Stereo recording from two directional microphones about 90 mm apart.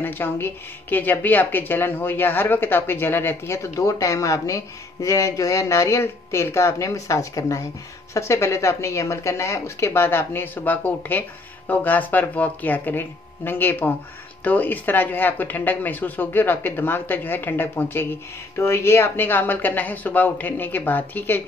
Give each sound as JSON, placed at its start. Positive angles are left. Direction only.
{"t": 0.0, "sound": "a woman's voice", "side_deg": 25}